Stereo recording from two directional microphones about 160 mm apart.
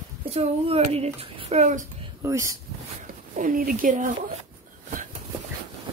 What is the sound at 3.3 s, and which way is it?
Speech, 55° right (ahead or behind).